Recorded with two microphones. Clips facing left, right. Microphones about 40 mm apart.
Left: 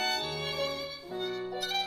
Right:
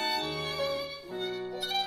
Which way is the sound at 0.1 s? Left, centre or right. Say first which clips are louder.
Right 1 dB; centre.